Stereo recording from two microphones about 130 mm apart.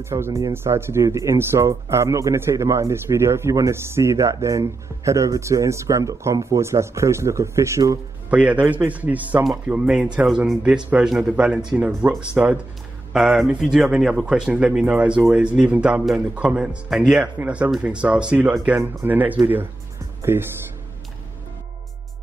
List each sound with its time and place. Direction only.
0.0 s speech: 20° right (ahead or behind)
8.3 s speech: 10° right (ahead or behind)